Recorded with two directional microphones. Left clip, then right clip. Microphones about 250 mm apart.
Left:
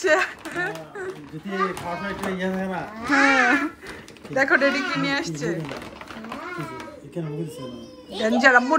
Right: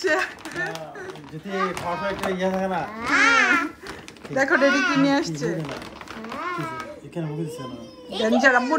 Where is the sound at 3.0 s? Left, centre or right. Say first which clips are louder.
Even; centre.